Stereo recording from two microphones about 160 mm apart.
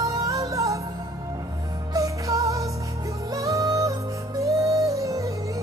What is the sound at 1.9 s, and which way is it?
Music, 20° right (ahead or behind).